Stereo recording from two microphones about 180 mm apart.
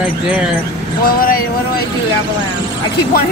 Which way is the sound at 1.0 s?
55° left (ahead or behind).